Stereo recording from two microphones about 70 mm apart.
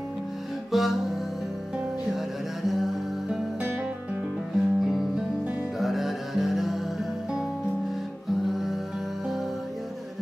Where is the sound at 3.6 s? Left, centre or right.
Right.